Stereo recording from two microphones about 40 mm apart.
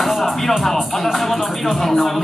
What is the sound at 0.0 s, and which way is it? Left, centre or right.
Music, centre.